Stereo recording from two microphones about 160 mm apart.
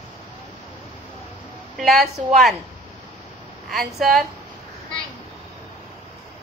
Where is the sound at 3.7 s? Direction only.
Centre (ahead or behind).